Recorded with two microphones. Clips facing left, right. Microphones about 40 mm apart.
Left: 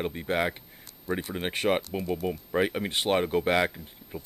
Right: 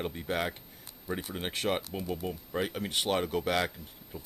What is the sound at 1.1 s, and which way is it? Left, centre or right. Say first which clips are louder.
Speech: left 5 dB; centre.